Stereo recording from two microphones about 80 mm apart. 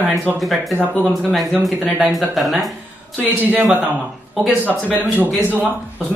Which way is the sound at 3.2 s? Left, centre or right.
Right.